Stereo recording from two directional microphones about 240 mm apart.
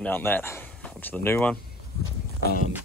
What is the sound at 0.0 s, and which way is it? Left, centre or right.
Speech, centre.